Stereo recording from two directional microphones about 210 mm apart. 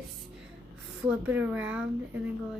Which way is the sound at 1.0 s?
5° right (ahead or behind).